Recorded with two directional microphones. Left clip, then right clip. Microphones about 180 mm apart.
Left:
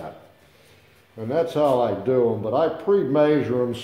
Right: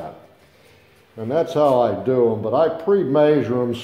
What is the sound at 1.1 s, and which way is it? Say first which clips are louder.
Speech: right 3 dB; 25° right (ahead or behind).